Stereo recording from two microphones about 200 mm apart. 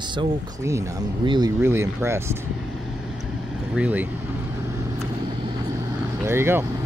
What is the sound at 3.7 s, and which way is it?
Speech, 5° right (ahead or behind).